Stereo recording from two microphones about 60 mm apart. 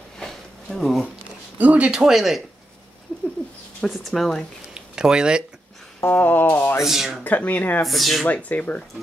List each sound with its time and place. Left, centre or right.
0.2 s a sound: centre
1.6 s speech: right; by 2.4 s centre
3.8 s speech: centre
4.7 s speech: centre
6.0 s a sound: left
6.8 s speech: centre
7.2 s speech: left
7.8 s speech: centre
8.3 s speech: left